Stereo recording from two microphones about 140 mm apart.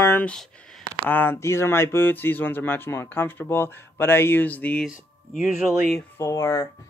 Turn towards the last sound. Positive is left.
turn(degrees=25)  # may be behind; listen again after turning